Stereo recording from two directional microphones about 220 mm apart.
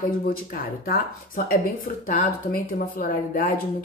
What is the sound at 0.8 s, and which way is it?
A woman's voice, 40° left (ahead or behind).